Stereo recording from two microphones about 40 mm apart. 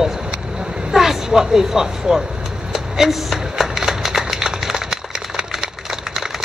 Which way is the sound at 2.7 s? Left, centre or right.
Centre.